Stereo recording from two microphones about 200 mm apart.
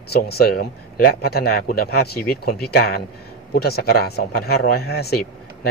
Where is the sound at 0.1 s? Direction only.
50° left (ahead or behind).